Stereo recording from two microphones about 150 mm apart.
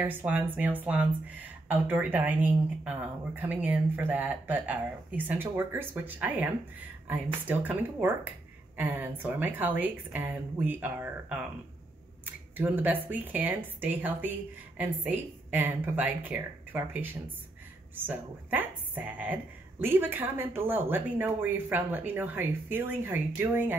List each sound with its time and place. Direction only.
0.0 s speech: 10° right (ahead or behind)
12.5 s speech: 10° right (ahead or behind)